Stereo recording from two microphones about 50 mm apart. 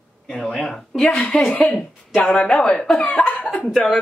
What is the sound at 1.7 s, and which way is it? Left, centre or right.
Speech, left.